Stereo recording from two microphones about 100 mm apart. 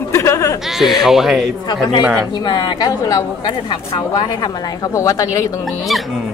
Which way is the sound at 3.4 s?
50° left (ahead or behind).